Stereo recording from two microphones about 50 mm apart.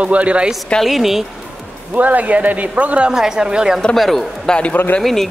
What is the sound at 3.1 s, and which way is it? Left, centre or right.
Speech, centre.